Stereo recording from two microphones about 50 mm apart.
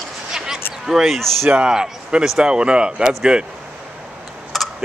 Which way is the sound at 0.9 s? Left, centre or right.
Centre.